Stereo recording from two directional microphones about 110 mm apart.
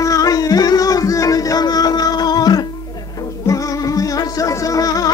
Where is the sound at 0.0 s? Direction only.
30° left (ahead or behind).